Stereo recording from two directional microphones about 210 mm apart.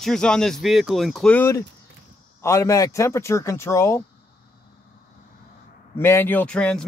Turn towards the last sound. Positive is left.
turn(degrees=5)  # may be behind; listen again after turning